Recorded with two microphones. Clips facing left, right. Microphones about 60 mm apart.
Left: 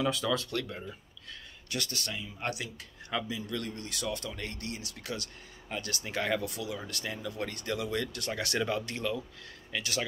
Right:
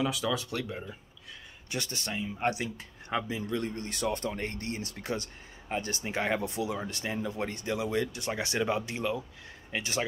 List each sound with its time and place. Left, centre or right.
0.0 s speech: centre; by 10.0 s right